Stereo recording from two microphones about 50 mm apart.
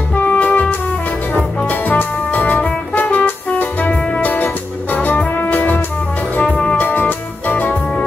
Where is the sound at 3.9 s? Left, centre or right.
Left.